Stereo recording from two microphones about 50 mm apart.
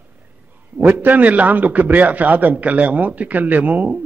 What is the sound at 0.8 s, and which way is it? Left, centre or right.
A man's voice, right.